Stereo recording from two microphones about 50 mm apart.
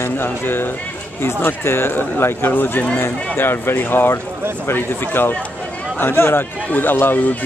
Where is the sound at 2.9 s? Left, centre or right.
Left.